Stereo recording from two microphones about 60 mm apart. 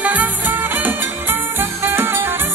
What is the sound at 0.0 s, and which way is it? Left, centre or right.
Music, right.